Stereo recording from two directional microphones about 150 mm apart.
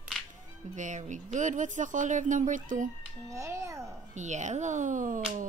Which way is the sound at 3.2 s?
20° right (ahead or behind).